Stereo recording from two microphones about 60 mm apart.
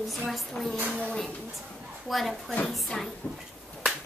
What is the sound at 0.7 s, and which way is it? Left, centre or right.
Speech, right.